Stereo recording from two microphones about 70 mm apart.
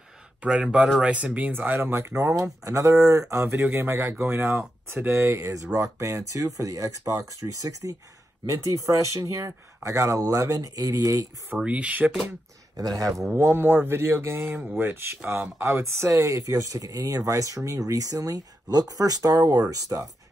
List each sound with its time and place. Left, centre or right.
0.4 s speech: centre; by 2.3 s right
2.3 s speech: right
5.5 s speech: right
11.6 s speech: centre
12.7 s speech: right
13.4 s speech: right